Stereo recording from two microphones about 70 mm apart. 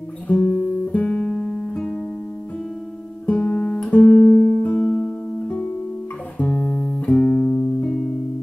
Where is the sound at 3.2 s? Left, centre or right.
Centre.